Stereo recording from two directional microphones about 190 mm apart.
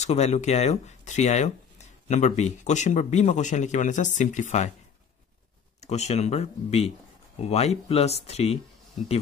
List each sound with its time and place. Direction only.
0.0 s a man's voice: 35° left (ahead or behind)
5.8 s a man's voice: 35° left (ahead or behind)